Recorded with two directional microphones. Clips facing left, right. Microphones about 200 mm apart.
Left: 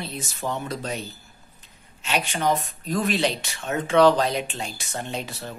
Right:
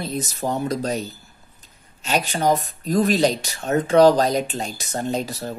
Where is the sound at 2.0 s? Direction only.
40° right (ahead or behind).